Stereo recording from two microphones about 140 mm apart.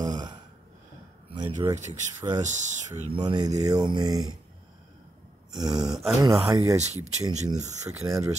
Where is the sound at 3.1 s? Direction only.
30° right (ahead or behind).